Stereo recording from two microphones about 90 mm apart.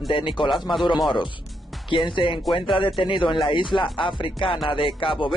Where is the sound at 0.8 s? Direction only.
55° left (ahead or behind).